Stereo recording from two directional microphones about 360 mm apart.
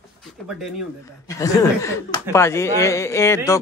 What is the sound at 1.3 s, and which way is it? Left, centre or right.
A man's voice, centre.